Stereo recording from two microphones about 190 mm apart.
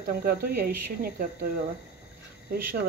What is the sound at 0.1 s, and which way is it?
Speech, 50° right (ahead or behind).